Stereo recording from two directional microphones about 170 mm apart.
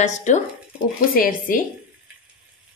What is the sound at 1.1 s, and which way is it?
Speech, 55° left (ahead or behind).